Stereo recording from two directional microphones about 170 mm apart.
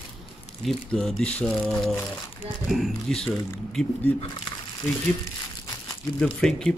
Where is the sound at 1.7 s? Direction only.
10° left (ahead or behind).